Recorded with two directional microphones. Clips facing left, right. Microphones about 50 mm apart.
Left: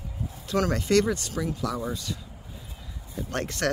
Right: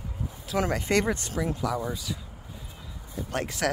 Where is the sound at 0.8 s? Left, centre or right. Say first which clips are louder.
Left 3 dB; right.